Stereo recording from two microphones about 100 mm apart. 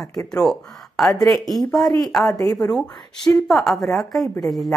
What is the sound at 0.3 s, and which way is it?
A woman's voice, 5° left (ahead or behind).